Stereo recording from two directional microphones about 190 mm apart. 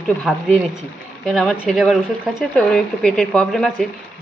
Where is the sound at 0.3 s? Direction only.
Centre (ahead or behind).